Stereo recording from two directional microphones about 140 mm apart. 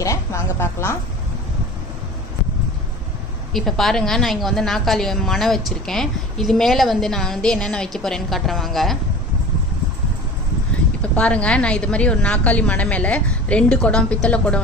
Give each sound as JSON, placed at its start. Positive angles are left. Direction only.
{"t": 0.0, "sound": "speech", "side_deg": 20}
{"t": 3.5, "sound": "a woman's voice", "side_deg": 0}
{"t": 11.0, "sound": "a woman's voice", "side_deg": 10}